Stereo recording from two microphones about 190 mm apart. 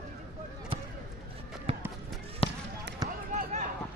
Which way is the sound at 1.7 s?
30° right (ahead or behind).